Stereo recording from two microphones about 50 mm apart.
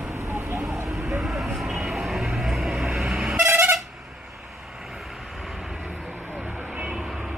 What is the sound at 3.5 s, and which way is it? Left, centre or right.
Vehicle, right.